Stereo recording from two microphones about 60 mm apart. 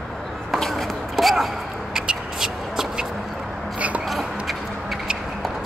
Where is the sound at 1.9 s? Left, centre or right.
Centre.